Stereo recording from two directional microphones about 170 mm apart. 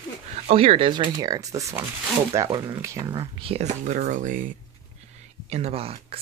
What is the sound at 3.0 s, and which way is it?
Speech, 30° right (ahead or behind).